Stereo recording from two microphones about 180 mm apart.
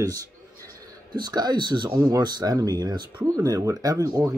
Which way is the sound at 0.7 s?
20° right (ahead or behind).